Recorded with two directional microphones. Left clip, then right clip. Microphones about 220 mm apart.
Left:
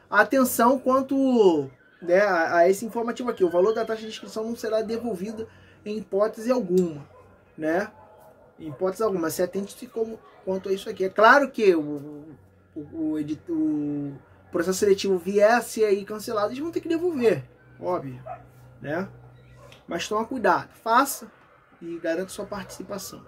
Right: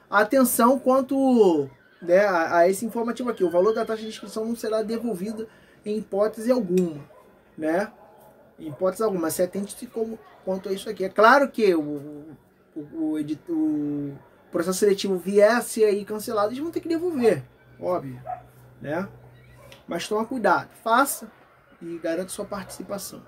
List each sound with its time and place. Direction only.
0.1 s speech: 5° right (ahead or behind)
13.1 s speech: centre (ahead or behind)
14.5 s speech: 5° right (ahead or behind)
18.8 s speech: 5° right (ahead or behind)